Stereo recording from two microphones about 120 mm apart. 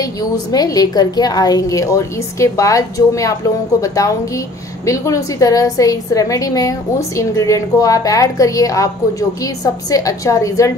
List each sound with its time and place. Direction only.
0.0 s a woman's voice: 30° left (ahead or behind)